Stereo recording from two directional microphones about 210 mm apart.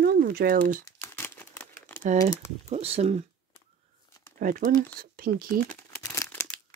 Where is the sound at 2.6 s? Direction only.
30° right (ahead or behind).